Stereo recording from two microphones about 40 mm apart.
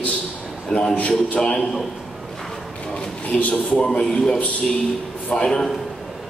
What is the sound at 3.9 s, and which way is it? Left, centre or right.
A man's voice, centre.